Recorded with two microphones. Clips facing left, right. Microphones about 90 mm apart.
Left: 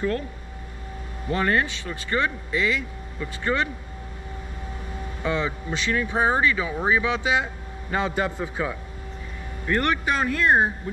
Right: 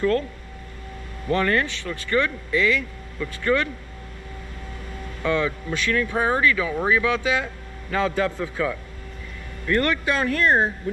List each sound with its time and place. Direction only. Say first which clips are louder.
1.2 s speech: right 1 dB; 15° left (ahead or behind)
5.0 s speech: right 3 dB; 15° left (ahead or behind)